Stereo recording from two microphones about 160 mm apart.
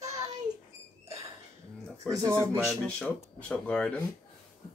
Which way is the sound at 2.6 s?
5° left (ahead or behind).